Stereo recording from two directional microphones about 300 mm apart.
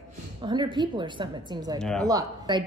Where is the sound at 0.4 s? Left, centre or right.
Centre.